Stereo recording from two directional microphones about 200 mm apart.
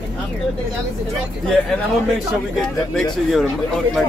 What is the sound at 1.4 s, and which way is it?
Speech, 5° left (ahead or behind).